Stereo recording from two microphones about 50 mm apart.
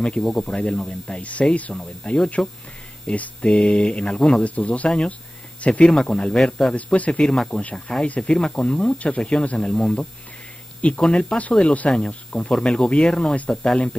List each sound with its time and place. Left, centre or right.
0.2 s speech: centre; by 5.9 s left
5.9 s speech: centre
6.7 s speech: left
7.3 s speech: centre